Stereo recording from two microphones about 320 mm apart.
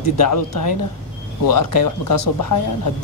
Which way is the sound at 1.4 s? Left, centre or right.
Left.